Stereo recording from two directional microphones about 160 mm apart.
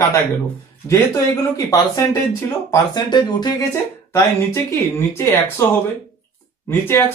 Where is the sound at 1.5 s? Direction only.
20° left (ahead or behind).